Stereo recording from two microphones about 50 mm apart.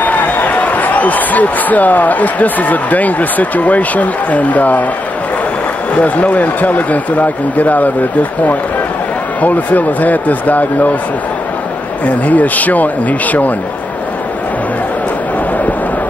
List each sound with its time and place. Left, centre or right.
0.0 s speech: left
5.9 s speech: left
12.3 s speech: left